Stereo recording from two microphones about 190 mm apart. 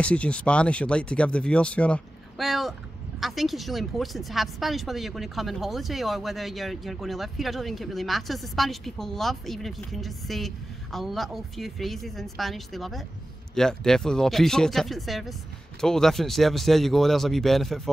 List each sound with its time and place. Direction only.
0.0 s a woman's voice: 5° left (ahead or behind)